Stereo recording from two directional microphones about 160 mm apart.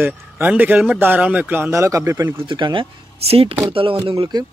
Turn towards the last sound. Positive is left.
turn(degrees=-30)  # may be behind; listen again after turning